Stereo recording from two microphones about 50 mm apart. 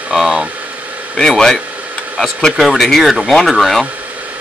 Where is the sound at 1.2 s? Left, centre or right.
Centre.